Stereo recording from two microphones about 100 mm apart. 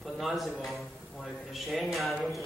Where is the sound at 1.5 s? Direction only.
Centre (ahead or behind).